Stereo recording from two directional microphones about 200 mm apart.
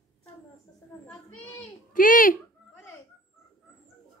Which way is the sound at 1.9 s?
40° left (ahead or behind).